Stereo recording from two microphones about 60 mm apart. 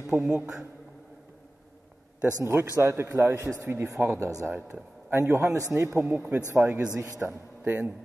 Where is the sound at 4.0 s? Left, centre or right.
Right.